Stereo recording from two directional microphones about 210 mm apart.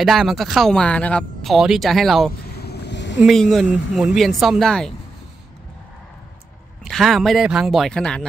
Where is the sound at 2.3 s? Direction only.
50° left (ahead or behind).